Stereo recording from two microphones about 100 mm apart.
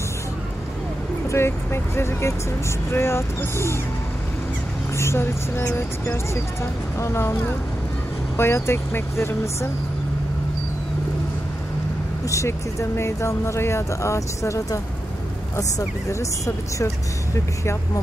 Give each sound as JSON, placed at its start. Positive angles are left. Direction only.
{"t": 1.3, "sound": "speech", "side_deg": 25}
{"t": 4.9, "sound": "speech", "side_deg": 25}
{"t": 8.4, "sound": "speech", "side_deg": 25}
{"t": 12.3, "sound": "speech", "side_deg": 30}
{"t": 16.1, "sound": "a woman's voice", "side_deg": 30}